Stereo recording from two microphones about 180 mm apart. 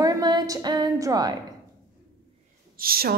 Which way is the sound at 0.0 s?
20° right (ahead or behind).